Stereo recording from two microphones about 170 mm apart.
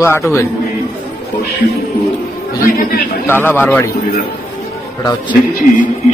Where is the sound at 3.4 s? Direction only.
10° left (ahead or behind).